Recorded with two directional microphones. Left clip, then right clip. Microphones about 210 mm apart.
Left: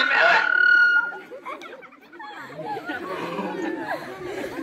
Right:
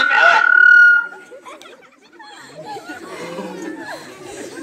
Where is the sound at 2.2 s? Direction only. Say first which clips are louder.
Left 1 dB; 35° right (ahead or behind).